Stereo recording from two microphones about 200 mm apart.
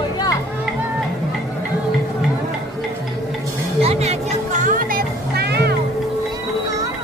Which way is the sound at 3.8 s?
35° right (ahead or behind).